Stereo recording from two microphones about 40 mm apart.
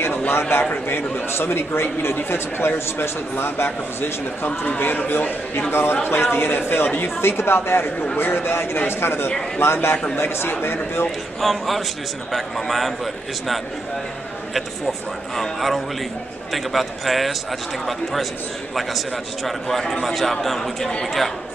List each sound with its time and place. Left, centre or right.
0.3 s a man's voice: left
0.8 s a man's voice: left
3.0 s a man's voice: left
4.7 s a man's voice: left
5.7 s a man's voice: left
7.0 s a man's voice: left
9.6 s a man's voice: left
10.1 s a man's voice: left
11.1 s a man's voice: centre
18.8 s a man's voice: centre